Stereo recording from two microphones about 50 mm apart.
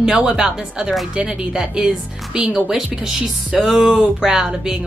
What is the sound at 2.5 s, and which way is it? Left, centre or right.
A woman's voice, centre.